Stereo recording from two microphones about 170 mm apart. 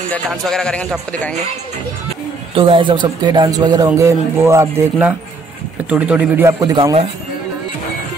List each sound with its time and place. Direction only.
0.3 s a man's voice: 5° left (ahead or behind)
2.5 s speech: 30° right (ahead or behind)